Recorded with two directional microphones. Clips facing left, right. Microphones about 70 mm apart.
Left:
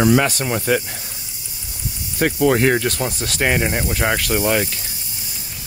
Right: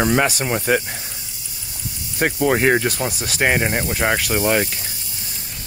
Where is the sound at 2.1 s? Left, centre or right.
Centre.